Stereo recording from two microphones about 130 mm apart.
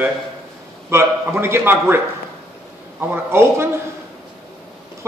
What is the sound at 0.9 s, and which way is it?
A man's voice, 20° right (ahead or behind).